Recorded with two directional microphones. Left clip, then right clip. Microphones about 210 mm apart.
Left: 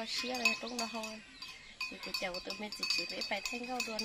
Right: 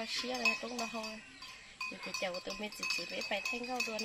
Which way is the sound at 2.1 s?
15° right (ahead or behind).